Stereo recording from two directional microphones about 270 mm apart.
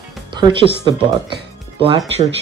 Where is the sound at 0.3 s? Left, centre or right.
Centre.